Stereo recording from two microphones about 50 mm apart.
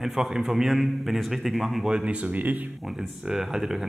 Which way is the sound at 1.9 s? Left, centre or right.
Right.